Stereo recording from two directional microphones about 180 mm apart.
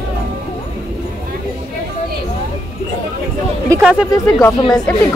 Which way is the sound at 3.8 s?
5° right (ahead or behind).